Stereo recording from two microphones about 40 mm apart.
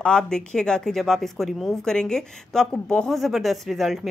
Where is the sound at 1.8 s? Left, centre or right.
Centre.